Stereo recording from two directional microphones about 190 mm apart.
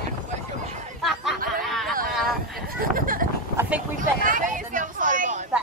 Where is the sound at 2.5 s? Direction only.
50° right (ahead or behind).